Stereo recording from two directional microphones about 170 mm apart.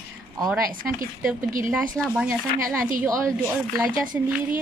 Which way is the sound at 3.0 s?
20° right (ahead or behind).